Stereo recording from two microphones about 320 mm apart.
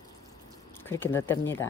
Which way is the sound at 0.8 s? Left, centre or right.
Centre.